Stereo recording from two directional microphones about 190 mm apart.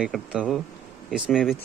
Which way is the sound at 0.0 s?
Centre (ahead or behind).